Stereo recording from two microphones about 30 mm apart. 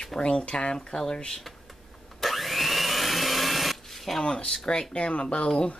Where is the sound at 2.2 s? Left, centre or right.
Centre.